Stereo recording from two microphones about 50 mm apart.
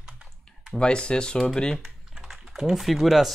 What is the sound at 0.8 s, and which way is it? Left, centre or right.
Speech, centre.